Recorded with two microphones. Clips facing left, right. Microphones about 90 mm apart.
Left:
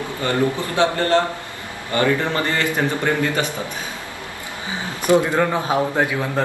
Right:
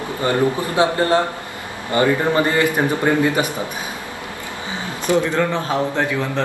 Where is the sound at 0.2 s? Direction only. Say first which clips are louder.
Right 2 dB; 20° right (ahead or behind).